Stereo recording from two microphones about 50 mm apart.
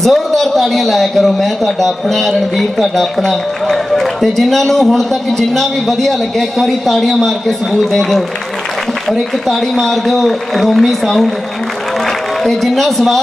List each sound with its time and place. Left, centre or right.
0.0 s a man's voice: centre
9.5 s a man's voice: centre
12.4 s a man's voice: centre